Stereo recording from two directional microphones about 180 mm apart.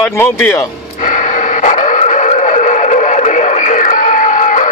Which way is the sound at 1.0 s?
45° left (ahead or behind).